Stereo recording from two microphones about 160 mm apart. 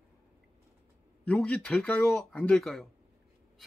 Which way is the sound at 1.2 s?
5° left (ahead or behind).